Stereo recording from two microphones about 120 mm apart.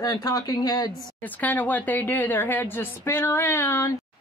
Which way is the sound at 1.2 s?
15° left (ahead or behind).